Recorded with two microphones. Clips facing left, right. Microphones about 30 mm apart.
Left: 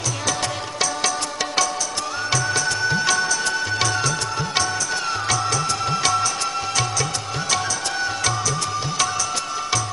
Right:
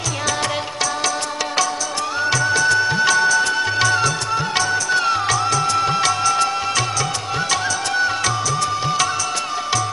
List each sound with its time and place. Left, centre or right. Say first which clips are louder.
2.2 s music: right 5 dB; centre; by 6.0 s right